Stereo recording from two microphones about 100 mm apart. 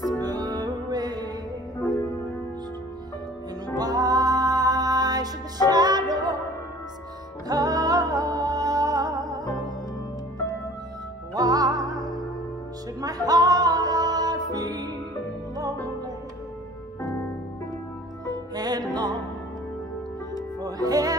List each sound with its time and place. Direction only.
0.2 s music: 40° right (ahead or behind)
3.7 s music: 40° right (ahead or behind)
7.4 s music: 40° right (ahead or behind)
11.3 s music: 40° right (ahead or behind)
18.5 s music: 40° right (ahead or behind)
20.6 s music: 40° right (ahead or behind)